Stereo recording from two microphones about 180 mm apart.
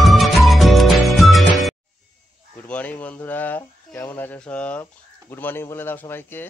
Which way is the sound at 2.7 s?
10° left (ahead or behind).